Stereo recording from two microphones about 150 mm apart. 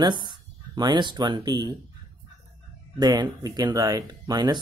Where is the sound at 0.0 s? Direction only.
30° right (ahead or behind).